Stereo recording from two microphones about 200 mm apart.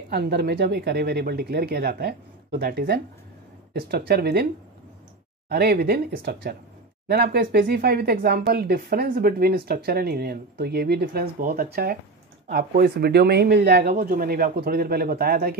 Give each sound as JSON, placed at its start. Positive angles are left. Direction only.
{"t": 0.1, "sound": "speech", "side_deg": -55}
{"t": 5.5, "sound": "speech", "side_deg": -55}